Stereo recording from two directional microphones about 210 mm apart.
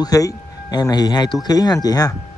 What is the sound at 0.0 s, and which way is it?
Speech, 15° left (ahead or behind).